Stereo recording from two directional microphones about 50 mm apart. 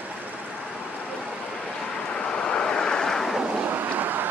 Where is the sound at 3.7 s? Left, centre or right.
Right.